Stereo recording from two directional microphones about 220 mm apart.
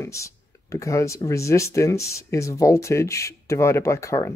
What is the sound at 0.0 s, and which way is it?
Speech, 15° left (ahead or behind).